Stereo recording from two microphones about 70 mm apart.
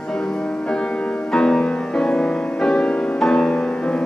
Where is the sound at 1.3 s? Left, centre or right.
Centre.